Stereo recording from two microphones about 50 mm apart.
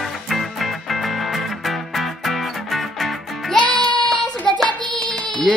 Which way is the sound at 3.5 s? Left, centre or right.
Left.